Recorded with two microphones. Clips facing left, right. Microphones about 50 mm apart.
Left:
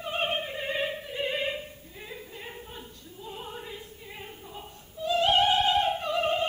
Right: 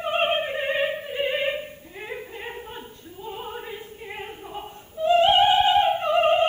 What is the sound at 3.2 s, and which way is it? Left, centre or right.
Opera, right.